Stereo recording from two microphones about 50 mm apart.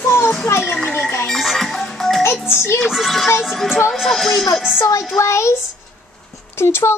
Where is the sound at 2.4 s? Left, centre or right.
Left.